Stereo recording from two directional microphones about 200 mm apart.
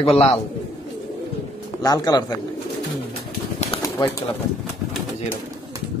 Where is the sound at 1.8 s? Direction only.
20° left (ahead or behind).